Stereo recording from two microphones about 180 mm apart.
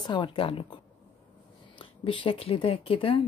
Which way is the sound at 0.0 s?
25° left (ahead or behind).